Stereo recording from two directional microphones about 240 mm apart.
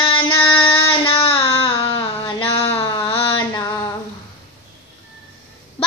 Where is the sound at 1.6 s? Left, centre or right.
Left.